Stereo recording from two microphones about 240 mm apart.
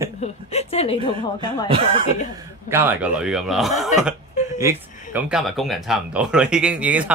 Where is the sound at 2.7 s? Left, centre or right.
Centre.